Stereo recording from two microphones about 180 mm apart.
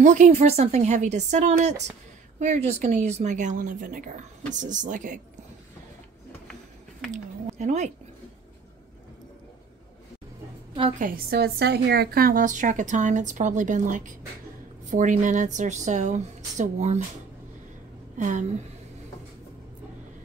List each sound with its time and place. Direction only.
0.0 s a woman's voice: 40° right (ahead or behind)
7.1 s speech: 40° right (ahead or behind)
11.0 s a woman's voice: 55° right (ahead or behind)
18.1 s a sound: 45° right (ahead or behind)